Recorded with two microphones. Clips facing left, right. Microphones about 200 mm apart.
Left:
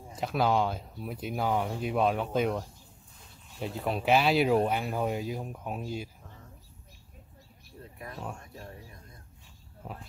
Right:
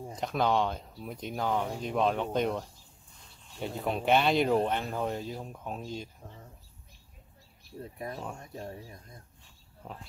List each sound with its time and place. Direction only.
0.1 s speech: 5° left (ahead or behind)
7.8 s speech: 30° right (ahead or behind)
9.8 s speech: 5° left (ahead or behind)